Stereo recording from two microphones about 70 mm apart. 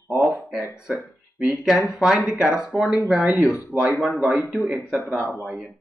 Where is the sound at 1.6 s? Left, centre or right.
Centre.